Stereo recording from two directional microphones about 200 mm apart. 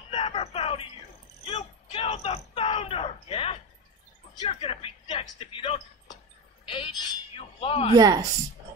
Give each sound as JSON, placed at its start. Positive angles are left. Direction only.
{"t": 0.1, "sound": "music", "side_deg": 30}
{"t": 1.4, "sound": "a sound", "side_deg": 25}
{"t": 4.4, "sound": "speech", "side_deg": 30}
{"t": 7.9, "sound": "speech", "side_deg": -20}